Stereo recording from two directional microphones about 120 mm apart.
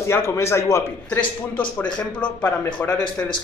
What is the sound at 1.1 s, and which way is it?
A man's voice, 10° left (ahead or behind).